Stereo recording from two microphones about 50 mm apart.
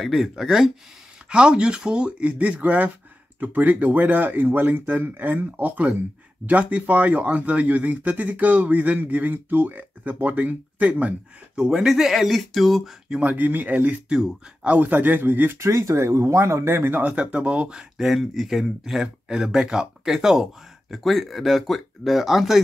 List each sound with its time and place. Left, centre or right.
0.0 s speech: centre
1.3 s speech: centre
11.6 s speech: centre
13.2 s speech: right
15.6 s speech: right
16.6 s speech: right
17.0 s speech: right
17.7 s speech: centre